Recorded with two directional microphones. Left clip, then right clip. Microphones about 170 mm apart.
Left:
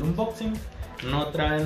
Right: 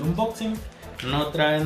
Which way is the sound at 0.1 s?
Centre (ahead or behind).